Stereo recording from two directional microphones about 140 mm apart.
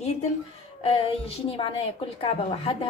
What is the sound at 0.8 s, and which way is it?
A woman's voice, 45° left (ahead or behind).